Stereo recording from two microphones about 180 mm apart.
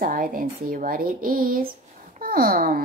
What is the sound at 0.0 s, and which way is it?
A woman's voice, 50° right (ahead or behind).